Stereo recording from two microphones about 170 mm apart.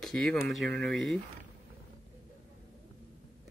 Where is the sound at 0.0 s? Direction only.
5° left (ahead or behind).